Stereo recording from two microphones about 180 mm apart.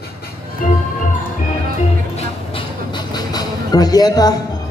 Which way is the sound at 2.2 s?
25° left (ahead or behind).